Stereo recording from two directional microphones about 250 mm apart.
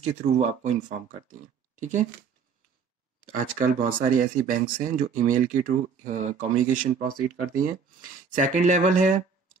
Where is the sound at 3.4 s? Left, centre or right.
Right.